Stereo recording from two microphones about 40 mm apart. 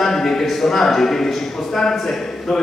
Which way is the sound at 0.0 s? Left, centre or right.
Centre.